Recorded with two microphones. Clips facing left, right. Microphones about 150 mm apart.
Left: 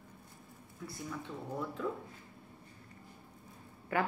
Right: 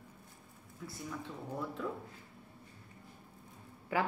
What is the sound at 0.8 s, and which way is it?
Speech, centre (ahead or behind).